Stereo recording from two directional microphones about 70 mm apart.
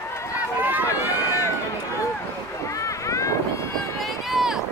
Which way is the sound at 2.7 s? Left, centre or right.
Left.